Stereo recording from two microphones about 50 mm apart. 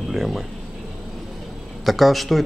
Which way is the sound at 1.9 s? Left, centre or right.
Centre.